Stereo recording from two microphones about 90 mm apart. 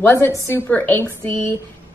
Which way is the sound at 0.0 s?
20° left (ahead or behind).